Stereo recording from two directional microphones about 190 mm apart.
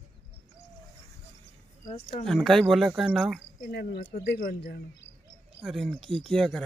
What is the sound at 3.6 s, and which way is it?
Speech, 60° left (ahead or behind).